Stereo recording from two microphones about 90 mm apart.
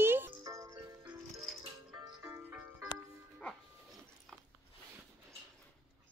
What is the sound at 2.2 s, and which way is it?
Music, 25° right (ahead or behind).